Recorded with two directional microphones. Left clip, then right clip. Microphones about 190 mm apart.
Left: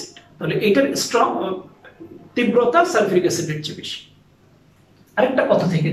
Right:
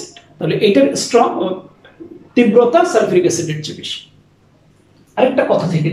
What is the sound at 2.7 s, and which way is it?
A man's voice, 15° right (ahead or behind).